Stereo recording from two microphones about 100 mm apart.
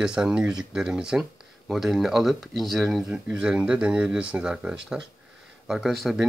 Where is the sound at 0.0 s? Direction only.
5° right (ahead or behind).